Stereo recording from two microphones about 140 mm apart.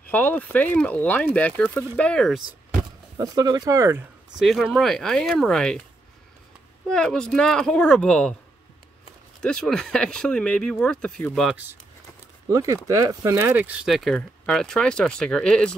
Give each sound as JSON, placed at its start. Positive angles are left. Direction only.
{"t": 0.1, "sound": "speech", "side_deg": 10}
{"t": 2.8, "sound": "speech", "side_deg": -25}
{"t": 4.4, "sound": "speech", "side_deg": 0}
{"t": 6.9, "sound": "speech", "side_deg": 5}
{"t": 9.4, "sound": "speech", "side_deg": 5}
{"t": 12.4, "sound": "speech", "side_deg": -25}